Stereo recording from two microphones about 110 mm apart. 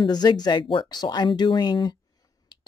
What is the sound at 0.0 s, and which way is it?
Speech, 40° left (ahead or behind).